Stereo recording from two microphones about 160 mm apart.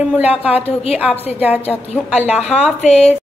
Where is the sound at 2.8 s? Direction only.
45° left (ahead or behind).